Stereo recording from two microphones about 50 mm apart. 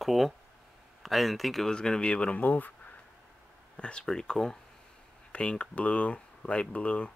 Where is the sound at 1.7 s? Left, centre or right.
Centre; by 2.7 s left.